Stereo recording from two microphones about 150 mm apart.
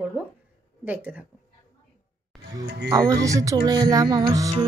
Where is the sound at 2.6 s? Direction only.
20° right (ahead or behind).